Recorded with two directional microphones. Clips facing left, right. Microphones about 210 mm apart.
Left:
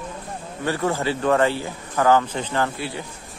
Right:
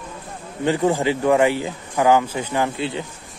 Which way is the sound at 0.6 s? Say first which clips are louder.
Right 5 dB; 15° right (ahead or behind).